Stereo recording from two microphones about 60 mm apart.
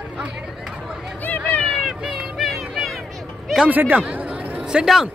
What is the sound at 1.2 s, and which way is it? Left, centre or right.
Run, left.